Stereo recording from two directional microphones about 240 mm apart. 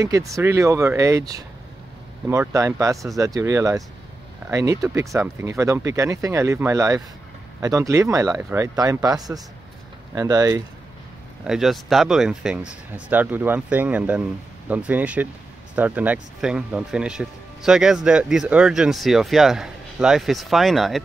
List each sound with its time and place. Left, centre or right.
0.0 s speech: centre
11.4 s speech: centre